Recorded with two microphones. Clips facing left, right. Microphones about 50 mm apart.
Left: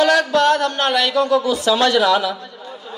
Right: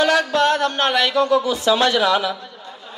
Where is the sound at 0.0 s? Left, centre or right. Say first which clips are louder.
Left 2 dB; right.